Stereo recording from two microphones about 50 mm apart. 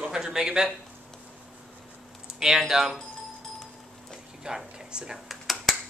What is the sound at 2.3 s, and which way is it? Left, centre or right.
Speech, centre.